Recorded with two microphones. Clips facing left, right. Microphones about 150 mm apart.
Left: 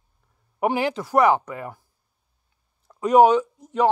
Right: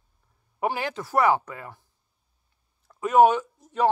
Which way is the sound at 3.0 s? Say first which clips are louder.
Left 3 dB; 20° left (ahead or behind).